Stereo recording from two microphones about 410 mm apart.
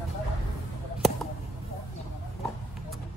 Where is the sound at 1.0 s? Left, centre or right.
Centre.